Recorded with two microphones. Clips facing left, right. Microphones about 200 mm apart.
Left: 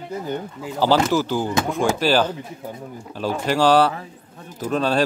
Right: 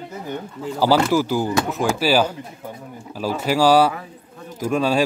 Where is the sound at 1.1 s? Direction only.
10° right (ahead or behind).